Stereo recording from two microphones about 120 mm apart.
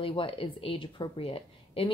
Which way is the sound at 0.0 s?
45° left (ahead or behind).